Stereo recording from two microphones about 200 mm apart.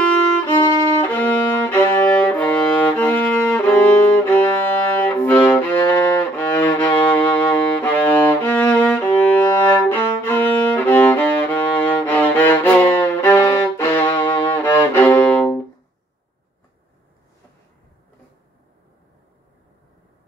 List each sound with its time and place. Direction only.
1.0 s music: 10° left (ahead or behind)
13.0 s violin: 10° left (ahead or behind)
14.2 s music: 10° left (ahead or behind)